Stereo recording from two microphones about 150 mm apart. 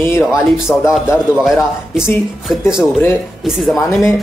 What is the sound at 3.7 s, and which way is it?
Speech, 15° left (ahead or behind).